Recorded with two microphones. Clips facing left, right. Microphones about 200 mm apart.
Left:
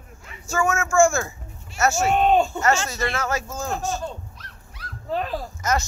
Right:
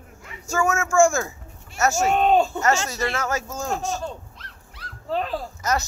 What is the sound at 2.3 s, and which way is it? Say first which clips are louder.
Speech: even; 10° right (ahead or behind).